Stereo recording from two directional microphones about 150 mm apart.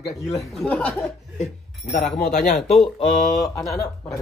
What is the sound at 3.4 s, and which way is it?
Speech, 25° left (ahead or behind).